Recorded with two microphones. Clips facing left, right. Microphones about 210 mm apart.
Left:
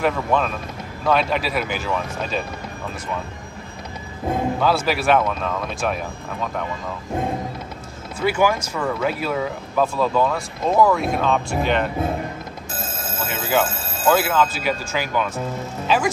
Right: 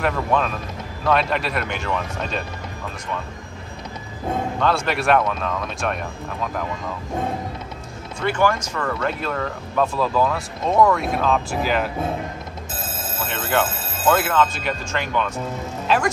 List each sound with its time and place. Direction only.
0.0 s speech: centre (ahead or behind)
4.3 s speech: 5° left (ahead or behind)
8.2 s speech: 5° left (ahead or behind)
13.2 s speech: centre (ahead or behind)